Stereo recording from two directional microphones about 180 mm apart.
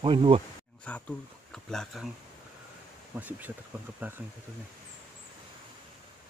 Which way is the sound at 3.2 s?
10° right (ahead or behind).